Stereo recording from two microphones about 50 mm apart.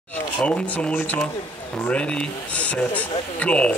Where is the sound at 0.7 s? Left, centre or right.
Left.